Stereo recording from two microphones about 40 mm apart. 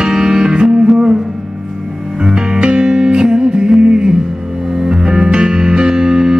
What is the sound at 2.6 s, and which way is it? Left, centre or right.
Music, centre.